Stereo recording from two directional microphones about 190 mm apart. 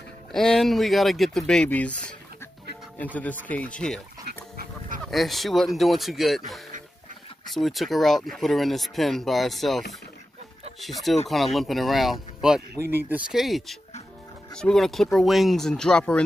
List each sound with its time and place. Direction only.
0.3 s speech: 5° left (ahead or behind)
3.4 s speech: 5° left (ahead or behind)
4.6 s a sound: 45° right (ahead or behind)
5.0 s speech: centre (ahead or behind)